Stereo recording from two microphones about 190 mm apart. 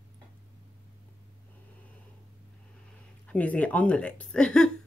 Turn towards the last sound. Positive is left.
turn(degrees=5)  # may be behind; listen again after turning